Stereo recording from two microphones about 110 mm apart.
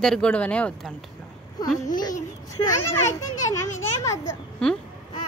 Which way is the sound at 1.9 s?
35° left (ahead or behind).